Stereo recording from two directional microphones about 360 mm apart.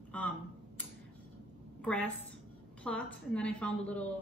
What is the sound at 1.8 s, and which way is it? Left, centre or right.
A woman's voice, centre.